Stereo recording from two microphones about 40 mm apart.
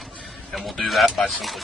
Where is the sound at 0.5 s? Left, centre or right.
Centre.